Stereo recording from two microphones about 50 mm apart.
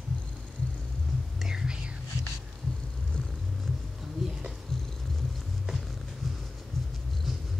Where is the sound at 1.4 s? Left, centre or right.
Centre.